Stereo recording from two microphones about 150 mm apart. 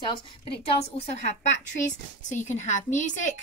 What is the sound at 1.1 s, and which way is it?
A woman's voice, 50° left (ahead or behind).